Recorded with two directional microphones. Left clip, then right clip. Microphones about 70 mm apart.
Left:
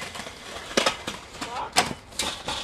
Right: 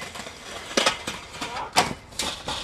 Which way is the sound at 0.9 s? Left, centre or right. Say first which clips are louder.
Right 2 dB; centre.